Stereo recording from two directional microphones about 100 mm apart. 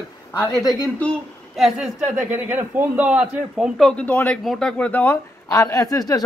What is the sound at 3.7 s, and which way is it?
Speech, 5° left (ahead or behind).